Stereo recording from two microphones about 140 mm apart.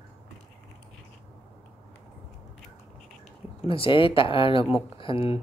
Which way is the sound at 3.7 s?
40° left (ahead or behind).